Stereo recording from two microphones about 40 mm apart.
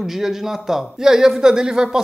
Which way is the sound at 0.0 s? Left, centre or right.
Centre.